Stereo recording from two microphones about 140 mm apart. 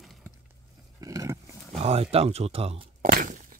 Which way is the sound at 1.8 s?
45° right (ahead or behind).